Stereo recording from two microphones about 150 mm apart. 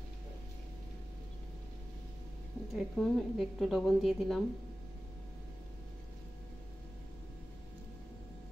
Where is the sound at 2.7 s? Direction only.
5° left (ahead or behind).